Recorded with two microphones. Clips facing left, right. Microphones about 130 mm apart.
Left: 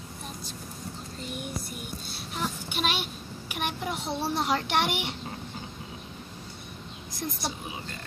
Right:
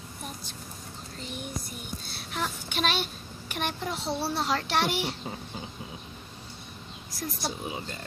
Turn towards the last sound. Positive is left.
turn(degrees=20)  # may be behind; listen again after turning